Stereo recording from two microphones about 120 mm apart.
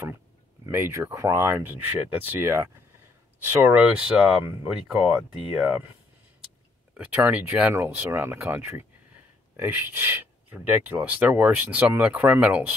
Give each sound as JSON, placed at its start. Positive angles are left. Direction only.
{"t": 0.7, "sound": "speech", "side_deg": -20}
{"t": 6.9, "sound": "speech", "side_deg": -15}